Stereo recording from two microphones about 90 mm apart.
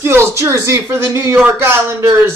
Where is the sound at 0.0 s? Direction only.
30° right (ahead or behind).